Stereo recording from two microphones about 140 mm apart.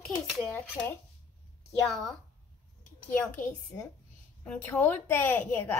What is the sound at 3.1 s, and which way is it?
A woman's voice, 15° left (ahead or behind).